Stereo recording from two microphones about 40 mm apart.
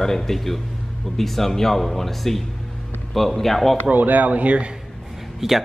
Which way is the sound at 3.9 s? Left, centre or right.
Right.